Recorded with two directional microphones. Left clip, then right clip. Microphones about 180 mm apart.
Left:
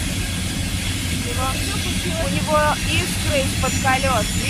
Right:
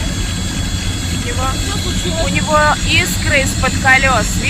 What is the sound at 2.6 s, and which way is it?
Speech, 5° right (ahead or behind).